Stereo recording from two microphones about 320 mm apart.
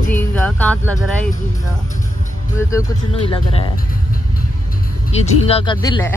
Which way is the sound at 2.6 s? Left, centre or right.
Centre.